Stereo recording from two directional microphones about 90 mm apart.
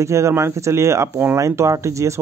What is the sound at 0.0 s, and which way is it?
Speech, 30° right (ahead or behind).